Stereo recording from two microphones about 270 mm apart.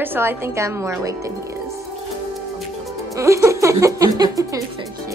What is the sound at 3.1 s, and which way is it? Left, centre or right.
A woman's voice, centre.